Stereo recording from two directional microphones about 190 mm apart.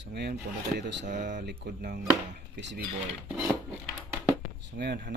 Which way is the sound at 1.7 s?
60° right (ahead or behind).